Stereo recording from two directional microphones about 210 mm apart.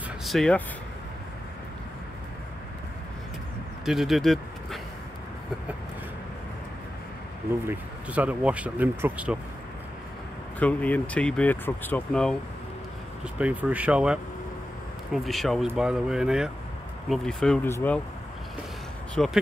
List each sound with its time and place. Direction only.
0.2 s speech: centre (ahead or behind)
3.8 s speech: centre (ahead or behind)
7.6 s speech: 10° right (ahead or behind)
10.6 s speech: 5° left (ahead or behind)
13.4 s speech: 5° right (ahead or behind)
15.2 s speech: centre (ahead or behind)
19.1 s speech: centre (ahead or behind)